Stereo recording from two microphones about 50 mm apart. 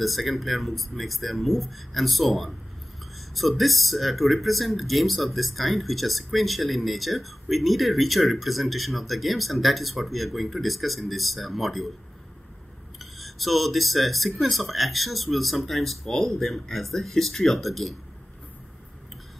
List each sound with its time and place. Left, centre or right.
0.0 s speech: centre
13.0 s speech: centre